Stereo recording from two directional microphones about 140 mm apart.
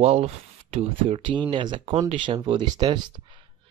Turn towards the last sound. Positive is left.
turn(degrees=-30)  # may be behind; listen again after turning